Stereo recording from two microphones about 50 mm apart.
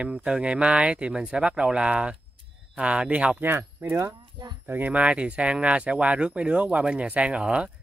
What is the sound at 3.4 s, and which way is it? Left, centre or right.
Speech, right.